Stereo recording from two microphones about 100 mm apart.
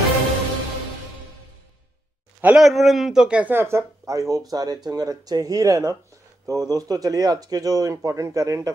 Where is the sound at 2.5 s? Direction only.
Centre (ahead or behind).